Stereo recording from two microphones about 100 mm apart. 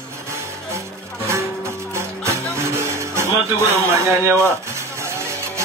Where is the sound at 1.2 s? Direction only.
30° right (ahead or behind).